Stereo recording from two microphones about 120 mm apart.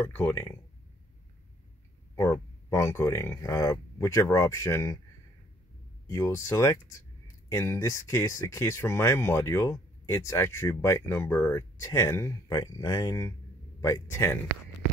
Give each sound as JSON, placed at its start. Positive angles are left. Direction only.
{"t": 0.0, "sound": "speech", "side_deg": 20}
{"t": 2.1, "sound": "speech", "side_deg": 20}
{"t": 6.0, "sound": "speech", "side_deg": 25}